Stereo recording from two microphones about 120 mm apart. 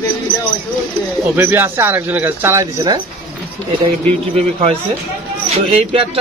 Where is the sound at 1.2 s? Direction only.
20° right (ahead or behind).